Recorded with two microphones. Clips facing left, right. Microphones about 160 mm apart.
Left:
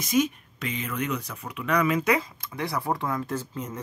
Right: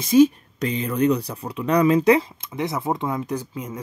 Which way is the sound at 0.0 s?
30° right (ahead or behind).